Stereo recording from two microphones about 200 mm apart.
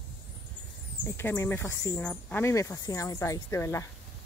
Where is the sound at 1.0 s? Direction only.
10° left (ahead or behind).